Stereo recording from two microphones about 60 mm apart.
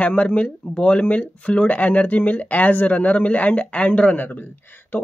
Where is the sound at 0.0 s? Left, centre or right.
Left.